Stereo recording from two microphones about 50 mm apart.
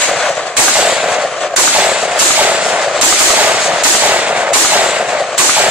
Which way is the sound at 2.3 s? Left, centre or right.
Right.